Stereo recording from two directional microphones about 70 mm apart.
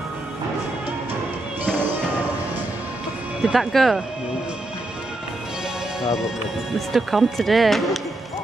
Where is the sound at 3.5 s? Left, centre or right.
Centre.